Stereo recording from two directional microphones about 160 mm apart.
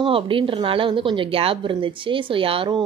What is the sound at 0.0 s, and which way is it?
A woman's voice, 35° right (ahead or behind).